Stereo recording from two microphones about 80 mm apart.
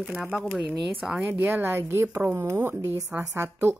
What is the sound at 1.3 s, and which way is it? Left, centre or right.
Speech, right.